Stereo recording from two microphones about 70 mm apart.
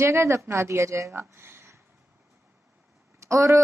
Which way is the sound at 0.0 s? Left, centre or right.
Right.